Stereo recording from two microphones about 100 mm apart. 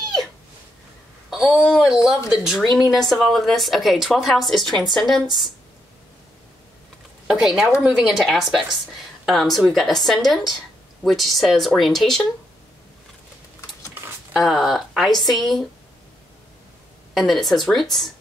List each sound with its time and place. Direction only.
1.3 s a woman's voice: 5° right (ahead or behind)
7.2 s a woman's voice: 5° right (ahead or behind)
14.3 s a woman's voice: 5° right (ahead or behind)
17.1 s a woman's voice: centre (ahead or behind)